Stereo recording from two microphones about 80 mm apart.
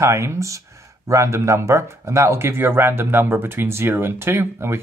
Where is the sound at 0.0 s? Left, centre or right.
Right.